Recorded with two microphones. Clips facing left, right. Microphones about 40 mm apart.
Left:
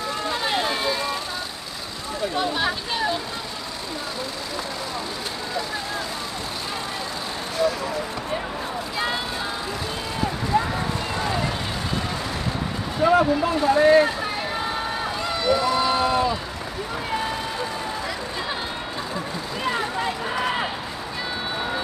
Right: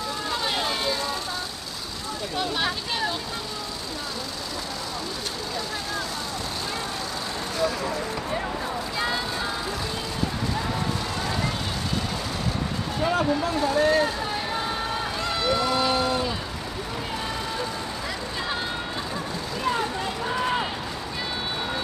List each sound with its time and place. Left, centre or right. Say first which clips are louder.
0.3 s vehicle: left 2 dB; centre
2.5 s speech: left 2 dB; centre
8.9 s vehicle: left 2 dB; centre
11.1 s run: left 3 dB; centre
13.0 s speech: left 6 dB; centre
15.2 s run: left 3 dB; centre
16.0 s a sound: left 4 dB; centre
19.7 s run: left 2 dB; centre